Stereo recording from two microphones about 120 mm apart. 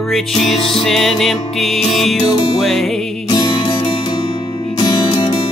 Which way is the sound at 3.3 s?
40° left (ahead or behind).